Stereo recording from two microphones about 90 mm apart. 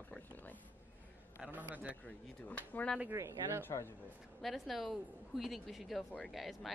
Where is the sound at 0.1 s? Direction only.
20° left (ahead or behind).